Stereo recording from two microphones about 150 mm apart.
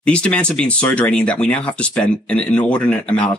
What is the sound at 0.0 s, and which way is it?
Speech, 5° left (ahead or behind).